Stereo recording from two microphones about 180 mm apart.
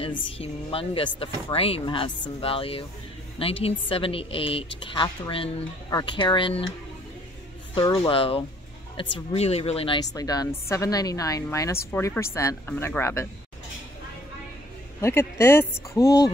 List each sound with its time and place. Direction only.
0.4 s speech: 30° left (ahead or behind)
7.7 s speech: 25° left (ahead or behind)
10.1 s speech: 20° left (ahead or behind)
15.0 s speech: 15° left (ahead or behind)